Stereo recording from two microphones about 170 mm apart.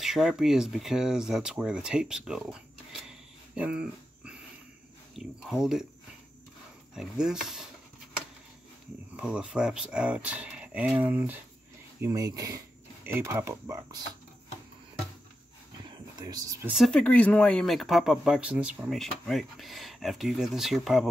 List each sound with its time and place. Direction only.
0.0 s speech: centre (ahead or behind)
7.0 s speech: 5° right (ahead or behind)
9.1 s speech: 5° right (ahead or behind)
15.8 s whispering: 25° right (ahead or behind)
16.6 s speech: centre (ahead or behind)